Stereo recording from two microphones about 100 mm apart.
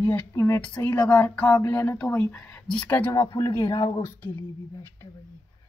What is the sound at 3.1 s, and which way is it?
Speech, 30° left (ahead or behind).